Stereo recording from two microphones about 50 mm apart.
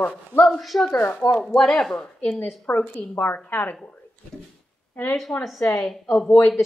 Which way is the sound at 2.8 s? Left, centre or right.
Left.